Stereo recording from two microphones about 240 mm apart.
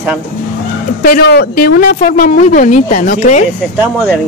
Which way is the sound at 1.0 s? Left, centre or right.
Left.